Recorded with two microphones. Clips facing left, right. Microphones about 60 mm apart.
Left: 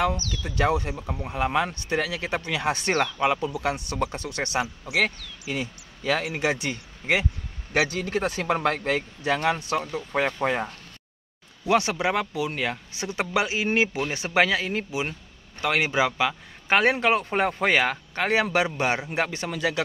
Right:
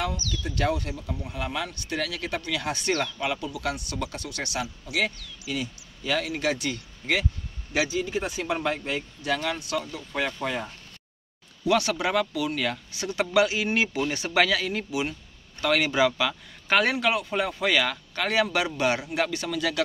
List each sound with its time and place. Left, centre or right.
0.3 s speech: left
0.9 s speech: left
4.9 s speech: left
5.5 s speech: left
7.7 s speech: left
9.2 s speech: left
11.6 s speech: left